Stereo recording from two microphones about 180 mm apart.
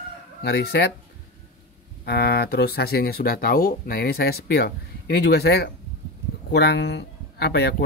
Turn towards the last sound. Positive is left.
turn(degrees=65)  # may be behind; listen again after turning